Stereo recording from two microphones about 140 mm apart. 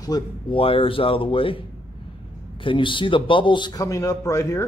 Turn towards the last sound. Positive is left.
turn(degrees=20)  # may be behind; listen again after turning